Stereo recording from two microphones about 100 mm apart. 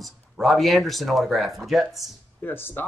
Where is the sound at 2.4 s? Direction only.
20° left (ahead or behind).